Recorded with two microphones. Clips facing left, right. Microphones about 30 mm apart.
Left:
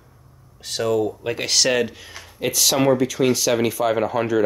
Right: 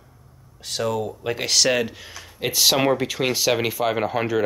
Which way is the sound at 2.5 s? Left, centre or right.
Right.